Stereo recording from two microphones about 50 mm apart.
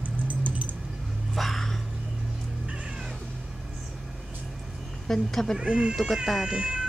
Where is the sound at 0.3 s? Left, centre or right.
Right.